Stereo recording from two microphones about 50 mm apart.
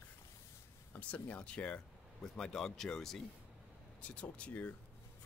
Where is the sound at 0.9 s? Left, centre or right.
Left.